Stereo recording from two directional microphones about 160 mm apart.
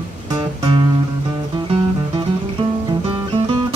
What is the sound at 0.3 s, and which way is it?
Music, 25° right (ahead or behind).